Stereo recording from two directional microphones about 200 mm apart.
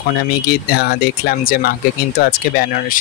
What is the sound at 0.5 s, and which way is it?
Speech, 50° left (ahead or behind).